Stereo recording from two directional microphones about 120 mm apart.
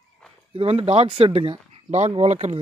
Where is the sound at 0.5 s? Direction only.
55° right (ahead or behind).